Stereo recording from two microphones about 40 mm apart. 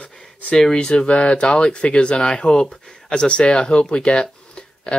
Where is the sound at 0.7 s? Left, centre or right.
Left.